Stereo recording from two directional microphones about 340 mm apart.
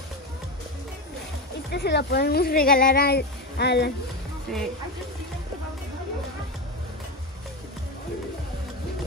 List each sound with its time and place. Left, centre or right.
1.7 s speech: left
4.5 s speech: centre